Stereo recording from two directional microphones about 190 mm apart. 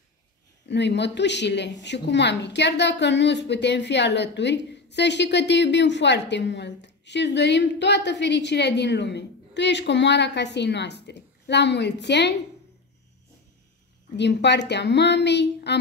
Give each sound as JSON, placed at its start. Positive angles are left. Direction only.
{"t": 0.7, "sound": "speech", "side_deg": 65}
{"t": 14.1, "sound": "speech", "side_deg": 65}